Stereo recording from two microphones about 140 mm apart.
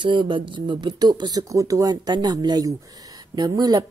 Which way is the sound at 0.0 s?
35° right (ahead or behind).